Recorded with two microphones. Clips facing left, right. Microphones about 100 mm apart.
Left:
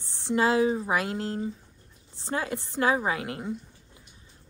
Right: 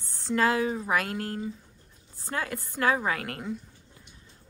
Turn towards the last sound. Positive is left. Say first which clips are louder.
# left 1 dB
turn(degrees=20)  # may be behind; listen again after turning